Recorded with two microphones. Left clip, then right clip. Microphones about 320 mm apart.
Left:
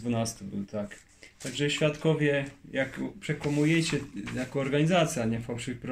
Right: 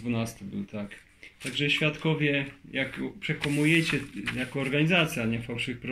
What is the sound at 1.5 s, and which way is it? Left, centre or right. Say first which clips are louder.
Speech: right 1 dB; left.